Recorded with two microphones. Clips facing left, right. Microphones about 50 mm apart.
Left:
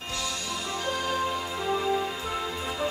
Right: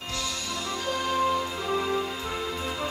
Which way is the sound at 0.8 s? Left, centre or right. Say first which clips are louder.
Right 1 dB; centre.